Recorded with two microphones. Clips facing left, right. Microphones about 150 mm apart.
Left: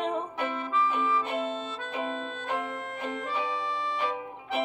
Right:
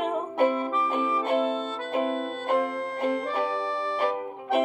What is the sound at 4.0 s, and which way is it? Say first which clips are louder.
Music: right 5 dB; 50° right (ahead or behind).